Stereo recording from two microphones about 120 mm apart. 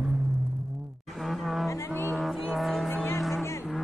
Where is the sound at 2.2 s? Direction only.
Centre (ahead or behind).